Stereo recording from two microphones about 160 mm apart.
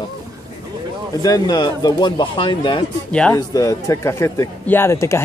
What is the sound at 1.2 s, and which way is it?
Speech, 25° left (ahead or behind).